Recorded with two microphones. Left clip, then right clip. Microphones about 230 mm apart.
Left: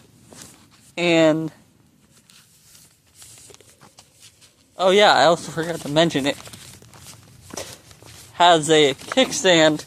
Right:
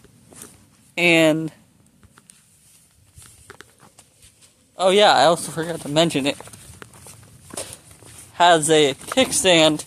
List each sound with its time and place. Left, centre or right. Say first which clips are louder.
0.9 s speech: right 1 dB; centre
4.7 s speech: even; centre
6.4 s a sound: even; left
7.5 s walk: left 1 dB; centre
8.3 s speech: even; centre